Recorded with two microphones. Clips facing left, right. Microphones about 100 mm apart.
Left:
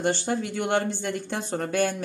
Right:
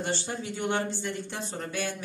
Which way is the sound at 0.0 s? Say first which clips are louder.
Left 7 dB; 60° left (ahead or behind).